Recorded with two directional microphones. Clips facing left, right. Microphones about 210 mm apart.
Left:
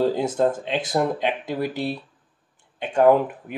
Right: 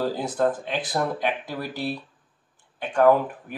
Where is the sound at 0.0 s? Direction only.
20° left (ahead or behind).